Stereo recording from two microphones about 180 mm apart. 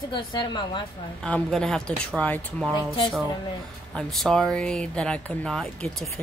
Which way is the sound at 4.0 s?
Centre (ahead or behind).